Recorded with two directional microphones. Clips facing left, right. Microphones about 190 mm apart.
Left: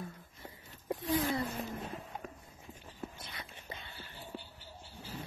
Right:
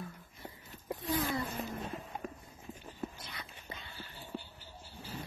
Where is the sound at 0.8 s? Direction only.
25° left (ahead or behind).